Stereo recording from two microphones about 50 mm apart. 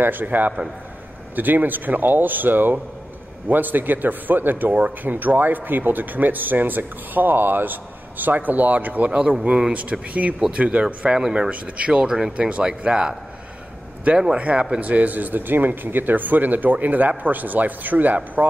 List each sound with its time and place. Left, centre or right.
0.0 s a man's voice: right
9.1 s speech: centre
11.1 s speech: centre
11.5 s a man's voice: right